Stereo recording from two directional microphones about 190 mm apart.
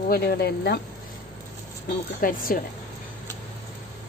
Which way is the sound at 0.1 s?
55° left (ahead or behind).